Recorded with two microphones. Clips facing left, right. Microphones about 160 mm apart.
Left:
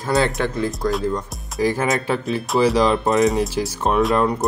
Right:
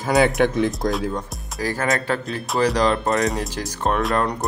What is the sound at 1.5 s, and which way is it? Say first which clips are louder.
Speech: left 3 dB; 15° left (ahead or behind).